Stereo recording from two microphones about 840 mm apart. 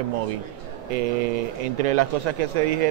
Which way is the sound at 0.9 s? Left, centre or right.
Right.